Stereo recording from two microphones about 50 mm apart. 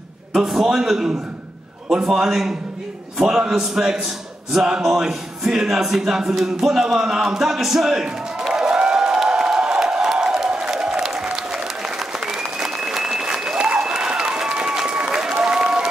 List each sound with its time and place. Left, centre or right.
0.3 s speech: centre
8.5 s a sound: centre
12.4 s applause: centre